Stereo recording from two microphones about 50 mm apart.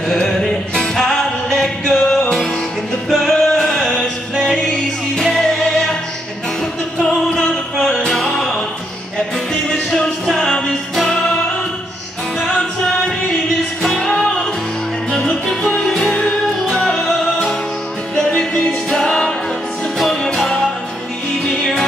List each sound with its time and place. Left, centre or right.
0.1 s music: centre
7.4 s music: centre
12.4 s music: centre
13.8 s music: centre
18.4 s music: centre